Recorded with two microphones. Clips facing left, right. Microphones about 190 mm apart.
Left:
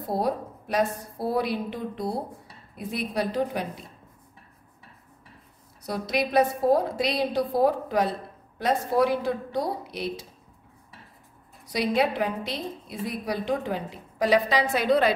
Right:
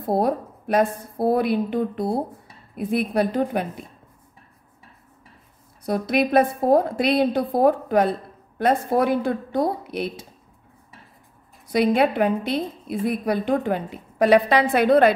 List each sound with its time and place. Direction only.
0.0 s a woman's voice: 55° right (ahead or behind)
5.9 s a woman's voice: 55° right (ahead or behind)
11.7 s a woman's voice: 55° right (ahead or behind)